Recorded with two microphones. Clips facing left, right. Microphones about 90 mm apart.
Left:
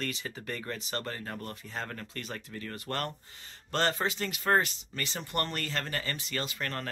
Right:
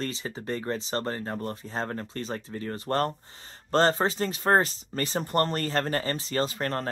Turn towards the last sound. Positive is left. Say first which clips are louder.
# right 7 dB
turn(degrees=-35)  # may be behind; listen again after turning